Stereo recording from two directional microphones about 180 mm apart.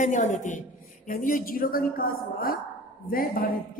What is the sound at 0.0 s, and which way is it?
Speech, 40° left (ahead or behind).